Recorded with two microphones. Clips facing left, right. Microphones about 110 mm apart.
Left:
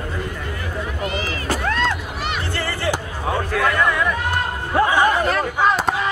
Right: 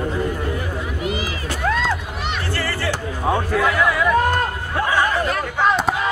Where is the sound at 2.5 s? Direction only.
20° left (ahead or behind).